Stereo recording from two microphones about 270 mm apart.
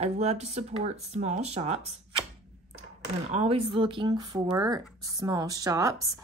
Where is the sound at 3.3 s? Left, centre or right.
Right.